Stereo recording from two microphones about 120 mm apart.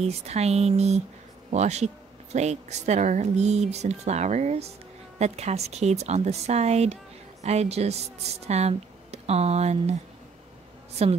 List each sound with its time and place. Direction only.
0.0 s speech: 60° right (ahead or behind)
11.0 s speech: 60° right (ahead or behind)